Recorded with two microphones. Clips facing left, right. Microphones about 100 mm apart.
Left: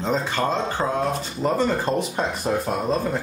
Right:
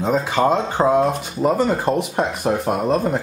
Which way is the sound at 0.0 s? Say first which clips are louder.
Right 5 dB; 10° right (ahead or behind).